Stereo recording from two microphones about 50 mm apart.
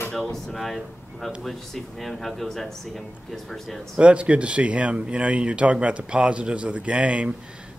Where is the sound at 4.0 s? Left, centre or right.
Right.